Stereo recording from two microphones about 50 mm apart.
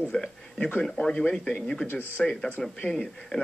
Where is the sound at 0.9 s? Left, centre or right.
Centre.